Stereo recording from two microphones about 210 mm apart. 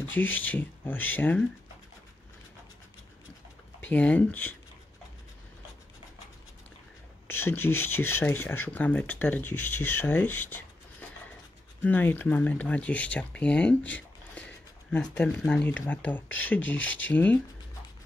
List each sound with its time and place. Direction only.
0.1 s speech: 10° left (ahead or behind)
3.8 s speech: 5° left (ahead or behind)
7.2 s speech: 10° left (ahead or behind)
11.8 s speech: 10° left (ahead or behind)